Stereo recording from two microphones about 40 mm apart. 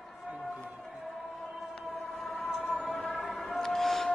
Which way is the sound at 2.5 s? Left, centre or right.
Centre.